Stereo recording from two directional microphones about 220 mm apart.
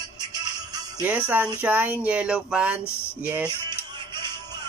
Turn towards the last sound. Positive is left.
turn(degrees=-20)  # may be behind; listen again after turning